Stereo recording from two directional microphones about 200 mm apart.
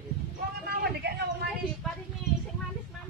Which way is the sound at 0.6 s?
55° right (ahead or behind).